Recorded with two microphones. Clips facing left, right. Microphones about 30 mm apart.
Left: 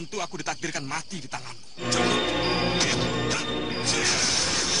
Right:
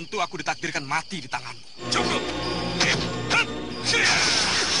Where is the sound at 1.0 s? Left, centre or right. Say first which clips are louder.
Right 5 dB; right.